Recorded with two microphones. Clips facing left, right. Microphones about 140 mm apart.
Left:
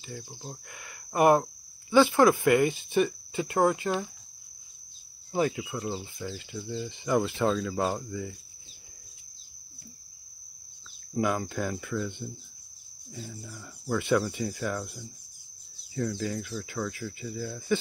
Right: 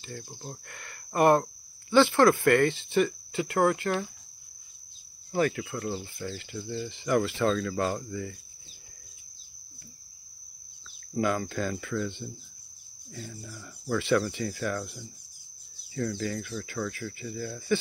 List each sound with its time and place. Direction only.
0.0 s speech: 10° left (ahead or behind)
5.3 s speech: 15° left (ahead or behind)
11.1 s speech: 15° left (ahead or behind)